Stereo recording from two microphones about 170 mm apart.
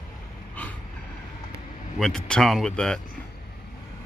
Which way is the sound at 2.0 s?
5° left (ahead or behind).